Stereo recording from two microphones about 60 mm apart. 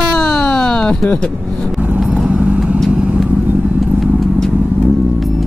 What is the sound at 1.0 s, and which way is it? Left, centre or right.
Speech, centre.